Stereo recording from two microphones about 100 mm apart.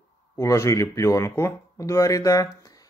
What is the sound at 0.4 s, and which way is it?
Speech, 30° left (ahead or behind).